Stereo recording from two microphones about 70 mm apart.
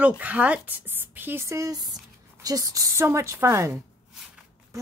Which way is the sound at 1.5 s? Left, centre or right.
Right.